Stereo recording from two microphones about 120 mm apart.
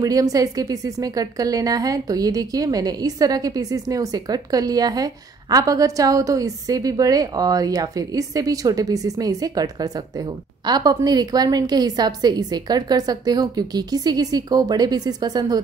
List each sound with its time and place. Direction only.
0.0 s a woman's voice: 30° right (ahead or behind)